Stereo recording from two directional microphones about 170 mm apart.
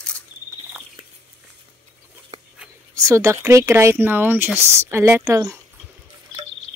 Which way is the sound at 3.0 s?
15° right (ahead or behind).